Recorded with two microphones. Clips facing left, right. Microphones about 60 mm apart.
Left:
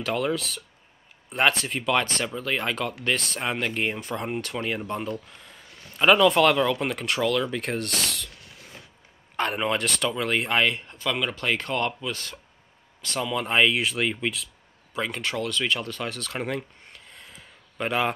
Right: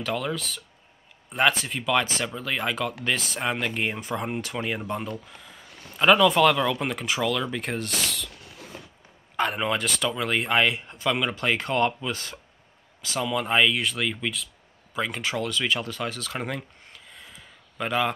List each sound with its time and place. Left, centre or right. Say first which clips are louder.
0.0 s speech: left 2 dB; centre
9.4 s speech: even; centre
10.9 s speech: right 2 dB; right
13.0 s speech: right 1 dB; centre
15.0 s speech: right 1 dB; centre